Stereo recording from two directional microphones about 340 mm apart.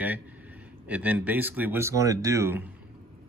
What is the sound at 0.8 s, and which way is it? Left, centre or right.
Speech, centre.